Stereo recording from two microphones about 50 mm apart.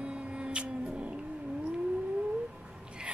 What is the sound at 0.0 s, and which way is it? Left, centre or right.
Cat, right.